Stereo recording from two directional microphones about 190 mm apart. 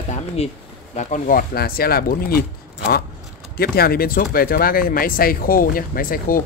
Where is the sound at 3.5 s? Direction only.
55° left (ahead or behind).